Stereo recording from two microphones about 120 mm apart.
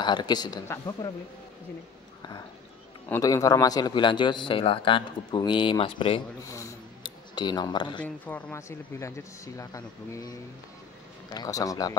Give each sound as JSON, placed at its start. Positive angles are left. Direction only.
{"t": 0.0, "sound": "speech", "side_deg": 35}
{"t": 3.2, "sound": "speech", "side_deg": 30}
{"t": 6.4, "sound": "speech", "side_deg": 25}
{"t": 7.0, "sound": "speech", "side_deg": 40}
{"t": 8.0, "sound": "speech", "side_deg": 10}
{"t": 8.5, "sound": "speech", "side_deg": 25}